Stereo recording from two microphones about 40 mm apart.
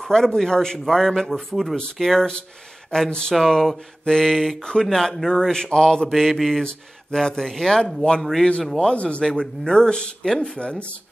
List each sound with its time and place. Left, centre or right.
0.0 s a man's voice: centre
2.0 s mantra: centre
2.9 s a man's voice: centre
4.8 s mantra: centre
5.3 s a man's voice: centre
6.0 s mantra: centre
6.6 s a man's voice: centre
8.2 s mantra: centre
8.6 s a man's voice: centre
8.9 s speech: left
9.7 s a man's voice: centre
10.6 s speech: left